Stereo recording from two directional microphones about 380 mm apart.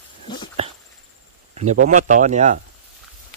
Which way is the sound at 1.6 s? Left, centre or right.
Centre.